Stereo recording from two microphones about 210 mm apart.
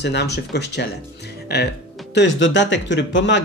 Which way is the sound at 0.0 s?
55° left (ahead or behind).